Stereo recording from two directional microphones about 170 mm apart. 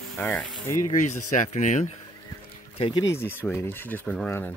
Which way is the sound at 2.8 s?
30° left (ahead or behind).